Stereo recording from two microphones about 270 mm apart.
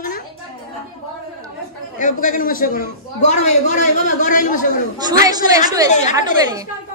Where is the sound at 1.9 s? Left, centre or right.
Left.